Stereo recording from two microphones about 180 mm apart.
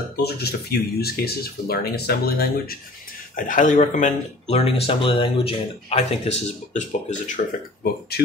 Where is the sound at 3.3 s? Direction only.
45° left (ahead or behind).